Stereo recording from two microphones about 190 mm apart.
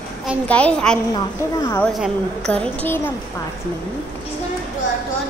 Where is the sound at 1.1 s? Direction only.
15° left (ahead or behind).